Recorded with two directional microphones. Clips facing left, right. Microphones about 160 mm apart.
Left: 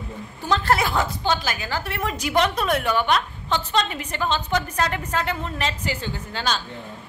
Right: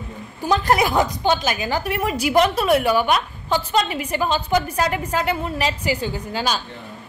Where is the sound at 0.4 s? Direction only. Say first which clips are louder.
Right 3 dB; 15° right (ahead or behind).